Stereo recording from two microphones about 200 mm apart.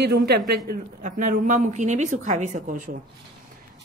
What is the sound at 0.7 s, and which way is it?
A woman's voice, 40° right (ahead or behind).